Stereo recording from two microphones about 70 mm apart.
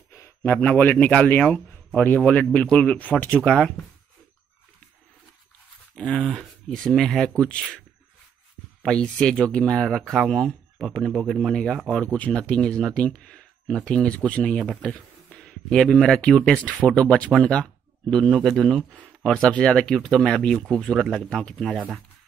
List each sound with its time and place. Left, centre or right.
0.4 s speech: left
6.0 s speech: centre
8.8 s speech: centre
12.0 s speech: centre
15.2 s a sound: centre
16.2 s speech: centre
21.6 s speech: centre